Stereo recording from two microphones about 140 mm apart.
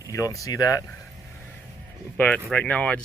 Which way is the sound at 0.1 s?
25° left (ahead or behind).